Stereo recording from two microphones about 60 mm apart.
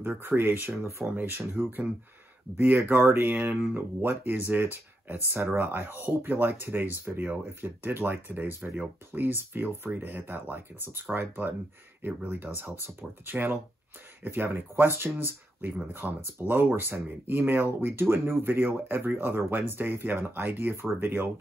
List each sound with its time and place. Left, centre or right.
0.0 s speech: right
1.1 s speech: right